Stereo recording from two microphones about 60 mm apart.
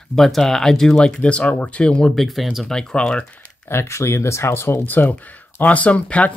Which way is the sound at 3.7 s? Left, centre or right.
Left.